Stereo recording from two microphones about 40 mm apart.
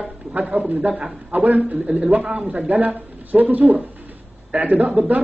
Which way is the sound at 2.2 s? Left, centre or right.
Right.